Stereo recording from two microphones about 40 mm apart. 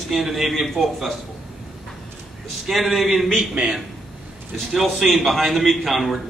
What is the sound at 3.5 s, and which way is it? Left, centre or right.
Speech, right.